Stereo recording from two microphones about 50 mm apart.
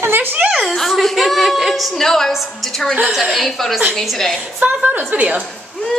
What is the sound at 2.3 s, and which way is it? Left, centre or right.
A woman's voice, centre.